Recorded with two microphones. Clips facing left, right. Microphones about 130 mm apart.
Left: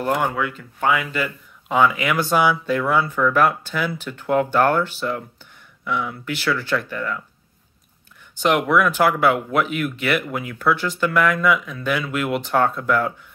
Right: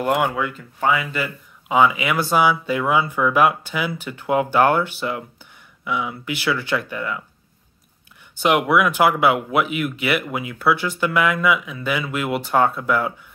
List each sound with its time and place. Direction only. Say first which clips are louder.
0.0 s speech: right 1 dB; 10° right (ahead or behind)
8.4 s speech: right 1 dB; 10° right (ahead or behind)